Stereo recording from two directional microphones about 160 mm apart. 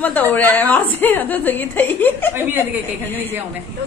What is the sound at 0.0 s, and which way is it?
A woman's voice, 10° left (ahead or behind).